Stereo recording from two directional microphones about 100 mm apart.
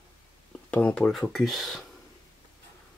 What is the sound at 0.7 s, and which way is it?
Speech, 15° left (ahead or behind).